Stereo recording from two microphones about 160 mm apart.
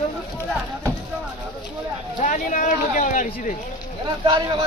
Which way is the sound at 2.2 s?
55° left (ahead or behind).